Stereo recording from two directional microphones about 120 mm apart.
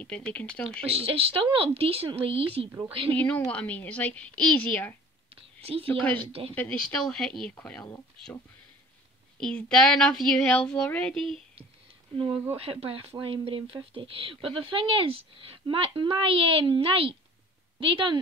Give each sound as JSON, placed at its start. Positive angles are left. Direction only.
{"t": 0.0, "sound": "speech", "side_deg": 10}
{"t": 0.9, "sound": "speech", "side_deg": -50}
{"t": 3.1, "sound": "speech", "side_deg": 15}
{"t": 5.3, "sound": "whispering", "side_deg": -55}
{"t": 5.9, "sound": "speech", "side_deg": 10}
{"t": 6.2, "sound": "speech", "side_deg": -50}
{"t": 6.9, "sound": "speech", "side_deg": 5}
{"t": 9.4, "sound": "speech", "side_deg": 5}
{"t": 12.5, "sound": "speech", "side_deg": -50}